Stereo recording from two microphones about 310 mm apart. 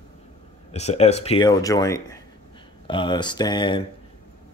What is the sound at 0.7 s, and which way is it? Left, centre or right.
Speech, left.